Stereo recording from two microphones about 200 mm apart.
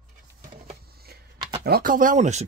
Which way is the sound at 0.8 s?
50° right (ahead or behind).